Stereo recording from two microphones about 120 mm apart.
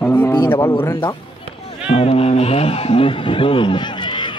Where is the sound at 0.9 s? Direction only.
35° left (ahead or behind).